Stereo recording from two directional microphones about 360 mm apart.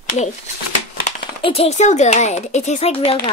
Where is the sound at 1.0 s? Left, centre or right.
Centre.